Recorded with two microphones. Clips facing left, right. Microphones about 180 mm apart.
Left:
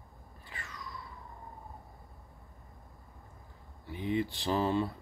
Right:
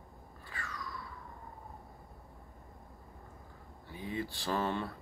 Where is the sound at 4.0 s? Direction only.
20° left (ahead or behind).